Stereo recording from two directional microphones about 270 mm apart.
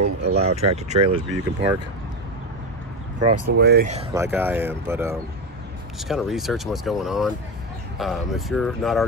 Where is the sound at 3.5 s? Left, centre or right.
Right.